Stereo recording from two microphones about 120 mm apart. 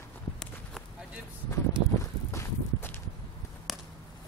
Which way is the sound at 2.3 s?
20° left (ahead or behind).